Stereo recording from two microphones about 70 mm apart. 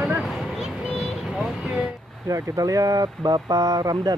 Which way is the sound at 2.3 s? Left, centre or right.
Right.